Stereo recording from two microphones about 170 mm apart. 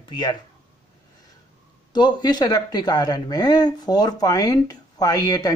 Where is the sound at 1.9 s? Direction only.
25° left (ahead or behind).